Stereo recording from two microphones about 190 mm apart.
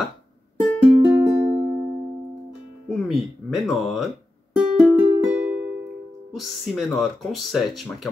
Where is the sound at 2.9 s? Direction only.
Centre (ahead or behind).